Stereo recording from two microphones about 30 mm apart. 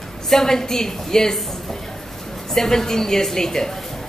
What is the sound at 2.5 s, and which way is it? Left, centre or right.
A woman's voice, centre.